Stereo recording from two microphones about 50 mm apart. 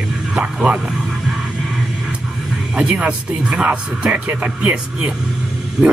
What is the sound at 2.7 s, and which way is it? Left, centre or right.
Speech, right.